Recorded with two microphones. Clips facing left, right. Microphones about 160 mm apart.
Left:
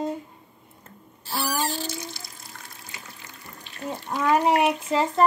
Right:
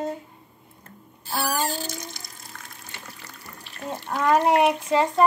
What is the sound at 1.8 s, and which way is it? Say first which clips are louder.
Water: left 1 dB; 50° right (ahead or behind).